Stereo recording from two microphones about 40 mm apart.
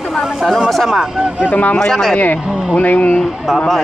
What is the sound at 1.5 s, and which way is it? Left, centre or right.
Speech, left.